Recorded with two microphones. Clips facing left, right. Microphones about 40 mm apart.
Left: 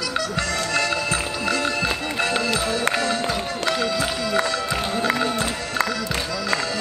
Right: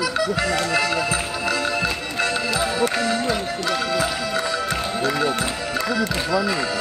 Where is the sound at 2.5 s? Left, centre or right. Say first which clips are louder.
Right 1 dB; centre.